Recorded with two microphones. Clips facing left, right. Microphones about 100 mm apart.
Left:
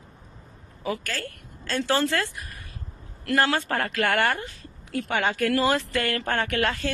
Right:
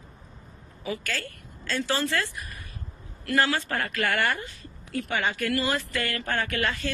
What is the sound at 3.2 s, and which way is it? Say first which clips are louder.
Speech: left 2 dB; 55° left (ahead or behind).